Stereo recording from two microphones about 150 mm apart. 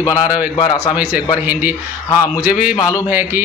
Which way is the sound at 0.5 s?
25° left (ahead or behind).